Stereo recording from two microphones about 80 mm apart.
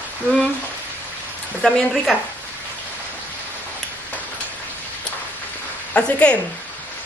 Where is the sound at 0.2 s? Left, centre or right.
Right.